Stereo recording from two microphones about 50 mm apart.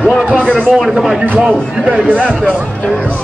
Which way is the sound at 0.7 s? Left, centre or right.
Centre.